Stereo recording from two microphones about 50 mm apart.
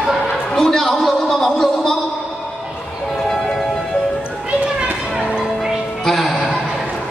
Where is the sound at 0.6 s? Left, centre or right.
Centre.